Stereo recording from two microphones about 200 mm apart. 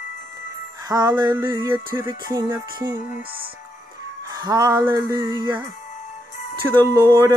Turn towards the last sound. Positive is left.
turn(degrees=-15)  # may be behind; listen again after turning